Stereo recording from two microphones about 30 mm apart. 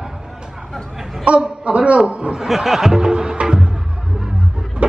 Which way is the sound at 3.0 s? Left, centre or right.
Right.